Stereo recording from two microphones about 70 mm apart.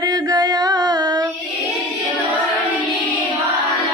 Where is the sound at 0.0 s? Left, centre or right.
Right.